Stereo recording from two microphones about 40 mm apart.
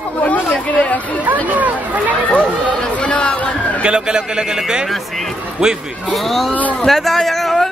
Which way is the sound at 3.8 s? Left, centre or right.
Right.